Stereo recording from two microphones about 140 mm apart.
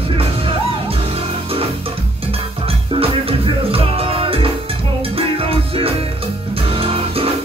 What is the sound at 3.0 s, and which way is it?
Music, 40° right (ahead or behind).